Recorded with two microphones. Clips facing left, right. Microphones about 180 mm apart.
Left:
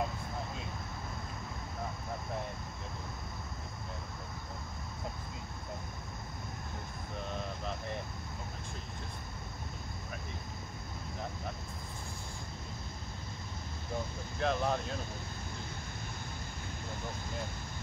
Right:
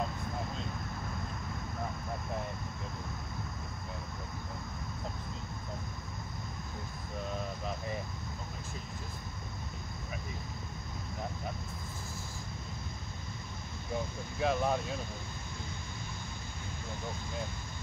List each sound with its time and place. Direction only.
14.4 s speech: 5° right (ahead or behind)